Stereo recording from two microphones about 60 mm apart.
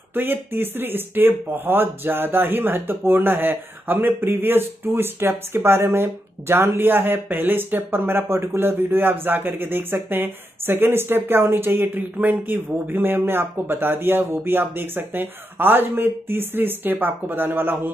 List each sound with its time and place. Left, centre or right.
0.1 s speech: right